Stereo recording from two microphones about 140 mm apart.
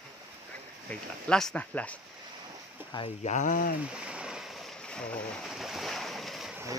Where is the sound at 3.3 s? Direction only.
60° left (ahead or behind).